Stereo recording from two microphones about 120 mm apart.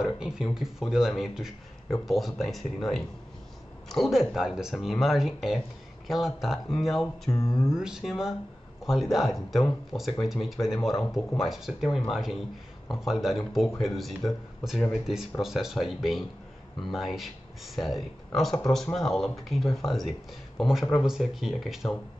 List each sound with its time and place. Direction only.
0.0 s speech: 5° right (ahead or behind)
7.2 s mantra: 25° left (ahead or behind)
7.7 s speech: 5° right (ahead or behind)